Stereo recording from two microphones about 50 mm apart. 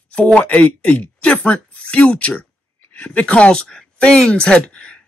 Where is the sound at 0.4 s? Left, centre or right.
Left.